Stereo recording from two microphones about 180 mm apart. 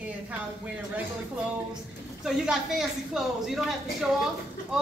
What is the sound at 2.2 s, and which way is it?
A woman's voice, centre (ahead or behind).